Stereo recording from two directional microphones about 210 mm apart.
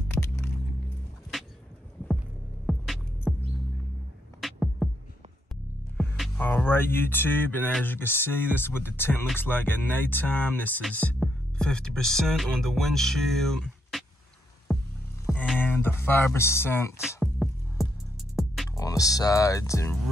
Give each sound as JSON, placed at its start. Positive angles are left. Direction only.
{"t": 2.6, "sound": "music", "side_deg": 0}
{"t": 4.4, "sound": "music", "side_deg": 0}
{"t": 5.9, "sound": "speech", "side_deg": 0}
{"t": 14.7, "sound": "music", "side_deg": 5}
{"t": 15.5, "sound": "speech", "side_deg": 10}
{"t": 17.2, "sound": "music", "side_deg": 0}
{"t": 18.7, "sound": "speech", "side_deg": 15}